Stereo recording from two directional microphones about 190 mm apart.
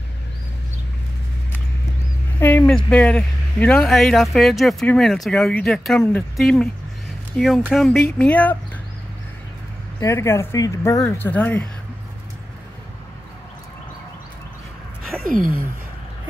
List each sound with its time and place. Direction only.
2.4 s speech: 10° left (ahead or behind)
9.9 s speech: 15° left (ahead or behind)
15.2 s a sound: 45° right (ahead or behind)